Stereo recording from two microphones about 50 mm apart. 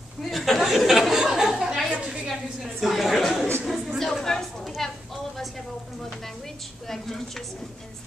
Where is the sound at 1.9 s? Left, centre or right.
Right.